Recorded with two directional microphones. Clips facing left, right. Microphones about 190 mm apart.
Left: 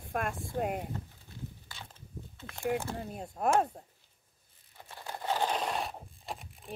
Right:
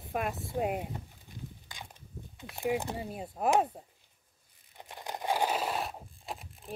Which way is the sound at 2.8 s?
15° right (ahead or behind).